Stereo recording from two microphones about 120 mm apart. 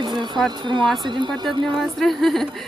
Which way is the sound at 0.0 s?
40° right (ahead or behind).